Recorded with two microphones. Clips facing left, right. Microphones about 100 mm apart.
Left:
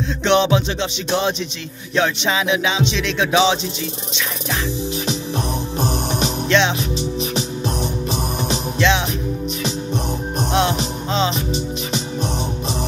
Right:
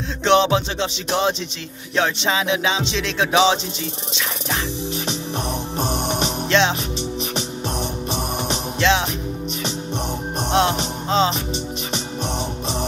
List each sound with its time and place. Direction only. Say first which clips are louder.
0.2 s music: even; 30° right (ahead or behind)
2.0 s music: left 1 dB; 30° right (ahead or behind)
6.5 s music: left 1 dB; 30° right (ahead or behind)
8.1 s music: left 2 dB; 20° right (ahead or behind)
10.5 s music: right 1 dB; 30° right (ahead or behind)